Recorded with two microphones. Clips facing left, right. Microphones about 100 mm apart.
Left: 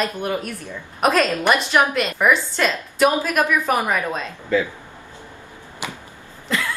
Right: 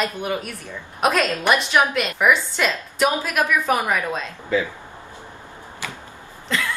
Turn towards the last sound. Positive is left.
turn(degrees=5)  # may be behind; listen again after turning